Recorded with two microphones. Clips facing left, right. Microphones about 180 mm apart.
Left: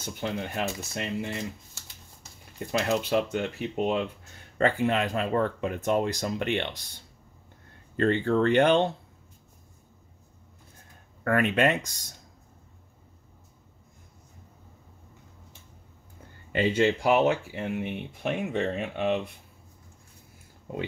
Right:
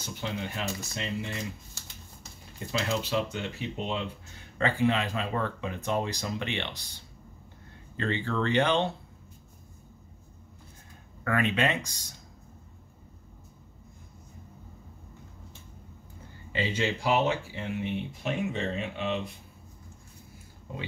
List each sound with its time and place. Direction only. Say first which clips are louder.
0.2 s speech: left 4 dB; 50° left (ahead or behind)
2.9 s speech: left 5 dB; 55° left (ahead or behind)
8.0 s speech: left 7 dB; 50° left (ahead or behind)
11.2 s speech: left 4 dB; 50° left (ahead or behind)
16.5 s speech: left 6 dB; 55° left (ahead or behind)